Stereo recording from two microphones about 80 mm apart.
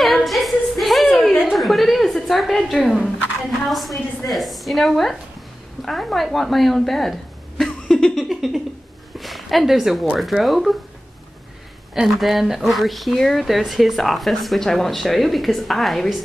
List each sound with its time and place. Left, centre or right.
0.0 s singing: centre
1.4 s a sound: centre
3.6 s a woman's voice: centre
11.9 s speech: centre